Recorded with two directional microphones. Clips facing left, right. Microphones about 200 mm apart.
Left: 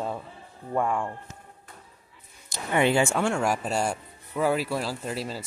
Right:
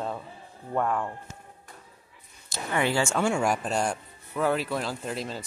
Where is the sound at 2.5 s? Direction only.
20° left (ahead or behind).